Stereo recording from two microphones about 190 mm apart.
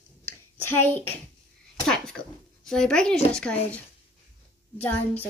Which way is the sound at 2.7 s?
5° left (ahead or behind).